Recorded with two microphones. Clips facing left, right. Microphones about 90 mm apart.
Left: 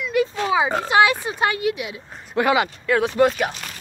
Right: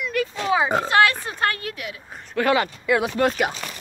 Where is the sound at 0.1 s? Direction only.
15° left (ahead or behind).